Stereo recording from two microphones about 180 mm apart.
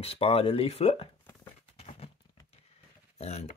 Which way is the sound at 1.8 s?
35° left (ahead or behind).